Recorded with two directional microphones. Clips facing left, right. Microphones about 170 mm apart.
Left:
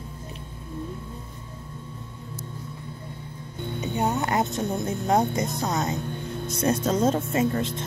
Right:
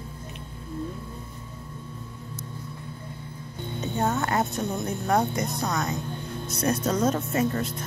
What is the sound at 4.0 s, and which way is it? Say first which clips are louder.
Speech: left 1 dB; 15° left (ahead or behind).